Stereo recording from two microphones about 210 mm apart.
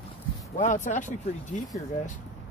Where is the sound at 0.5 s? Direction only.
35° left (ahead or behind).